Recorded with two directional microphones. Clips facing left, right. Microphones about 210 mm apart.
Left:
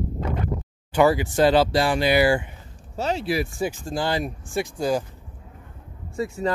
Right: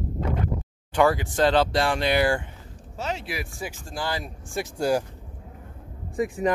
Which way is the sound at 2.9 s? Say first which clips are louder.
Left 7 dB; 35° left (ahead or behind).